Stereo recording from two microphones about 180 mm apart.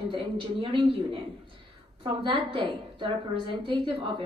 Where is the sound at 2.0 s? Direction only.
30° right (ahead or behind).